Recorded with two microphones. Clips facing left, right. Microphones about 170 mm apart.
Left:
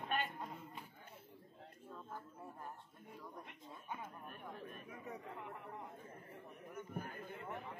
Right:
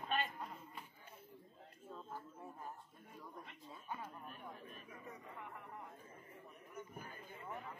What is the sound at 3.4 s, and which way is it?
Speech, 15° left (ahead or behind).